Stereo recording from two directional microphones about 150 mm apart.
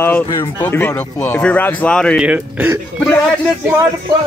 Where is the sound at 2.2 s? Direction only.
10° right (ahead or behind).